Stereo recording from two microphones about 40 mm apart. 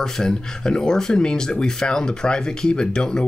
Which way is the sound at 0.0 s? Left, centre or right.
Centre.